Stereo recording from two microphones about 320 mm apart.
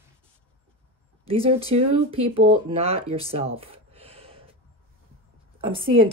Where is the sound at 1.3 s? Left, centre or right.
Centre.